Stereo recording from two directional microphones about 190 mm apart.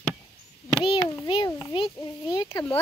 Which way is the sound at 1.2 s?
25° left (ahead or behind).